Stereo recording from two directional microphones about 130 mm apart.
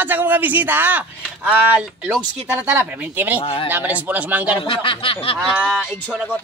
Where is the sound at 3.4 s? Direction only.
45° left (ahead or behind).